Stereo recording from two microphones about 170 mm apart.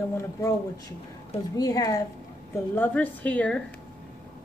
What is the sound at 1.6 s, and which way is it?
A woman's voice, 20° left (ahead or behind).